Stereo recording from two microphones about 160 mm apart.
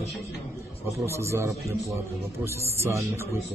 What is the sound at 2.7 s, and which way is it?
Speech, 15° right (ahead or behind).